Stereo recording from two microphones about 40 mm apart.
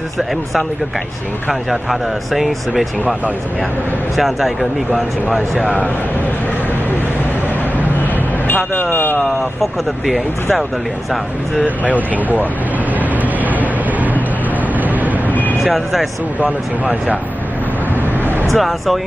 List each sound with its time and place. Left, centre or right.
1.5 s speech: centre
4.2 s speech: centre
8.9 s speech: left
9.4 s speech: centre
11.6 s speech: right
13.0 s vehicle: right
15.6 s speech: centre
18.5 s speech: centre